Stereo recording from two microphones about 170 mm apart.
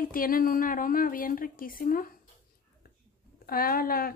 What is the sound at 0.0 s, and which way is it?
A woman's voice, 55° left (ahead or behind).